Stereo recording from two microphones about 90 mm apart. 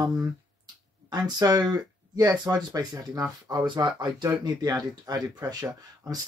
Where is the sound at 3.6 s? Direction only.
55° right (ahead or behind).